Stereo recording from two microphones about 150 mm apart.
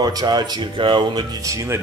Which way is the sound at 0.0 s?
25° right (ahead or behind).